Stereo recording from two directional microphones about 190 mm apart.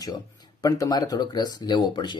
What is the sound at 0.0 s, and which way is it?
Speech, 20° left (ahead or behind).